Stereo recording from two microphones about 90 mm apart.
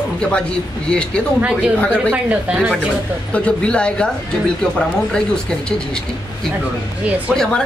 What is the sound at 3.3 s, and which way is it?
Speech, 10° left (ahead or behind).